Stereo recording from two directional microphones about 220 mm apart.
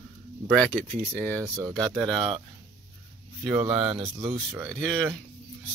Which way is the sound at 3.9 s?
20° right (ahead or behind).